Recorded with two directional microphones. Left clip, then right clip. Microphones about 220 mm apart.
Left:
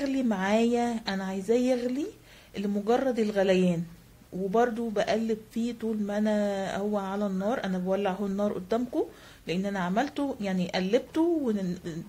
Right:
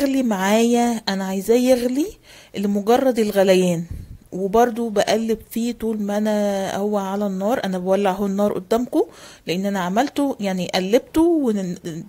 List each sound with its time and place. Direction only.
0.0 s speech: 40° right (ahead or behind)